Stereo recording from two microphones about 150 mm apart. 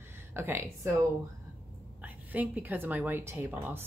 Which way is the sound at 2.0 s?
10° right (ahead or behind).